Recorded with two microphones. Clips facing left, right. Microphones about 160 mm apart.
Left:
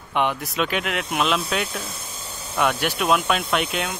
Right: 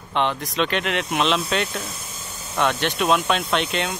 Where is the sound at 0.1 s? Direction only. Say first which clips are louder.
Even; 10° left (ahead or behind).